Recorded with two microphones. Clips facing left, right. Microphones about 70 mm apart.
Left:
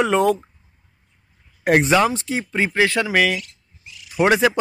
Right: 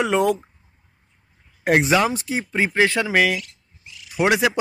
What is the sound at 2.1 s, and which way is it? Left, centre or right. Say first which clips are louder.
Speech: left 1 dB; right.